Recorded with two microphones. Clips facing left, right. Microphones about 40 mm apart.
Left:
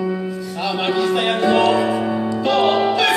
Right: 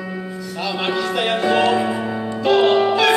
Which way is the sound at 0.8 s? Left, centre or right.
Centre.